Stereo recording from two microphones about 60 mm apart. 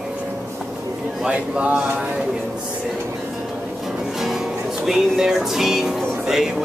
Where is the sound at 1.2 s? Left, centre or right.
Centre.